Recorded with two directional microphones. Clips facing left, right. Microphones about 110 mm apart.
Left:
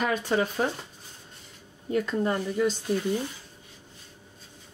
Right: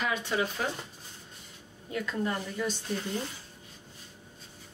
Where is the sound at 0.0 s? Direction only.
45° left (ahead or behind).